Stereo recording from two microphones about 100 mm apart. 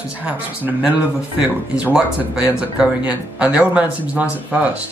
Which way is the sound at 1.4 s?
10° right (ahead or behind).